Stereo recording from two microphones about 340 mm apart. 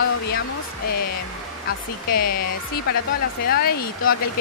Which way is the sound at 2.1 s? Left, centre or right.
Left.